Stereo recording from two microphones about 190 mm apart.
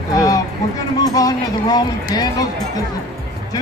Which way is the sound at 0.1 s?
20° left (ahead or behind).